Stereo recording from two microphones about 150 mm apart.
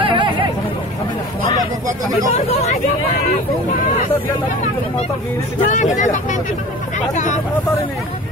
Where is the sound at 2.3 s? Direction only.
45° left (ahead or behind).